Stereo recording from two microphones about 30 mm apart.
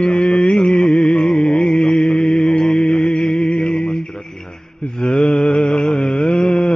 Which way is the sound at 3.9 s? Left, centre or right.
Centre.